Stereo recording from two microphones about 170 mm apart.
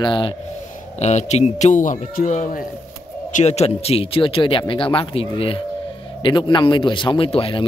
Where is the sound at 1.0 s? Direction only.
40° left (ahead or behind).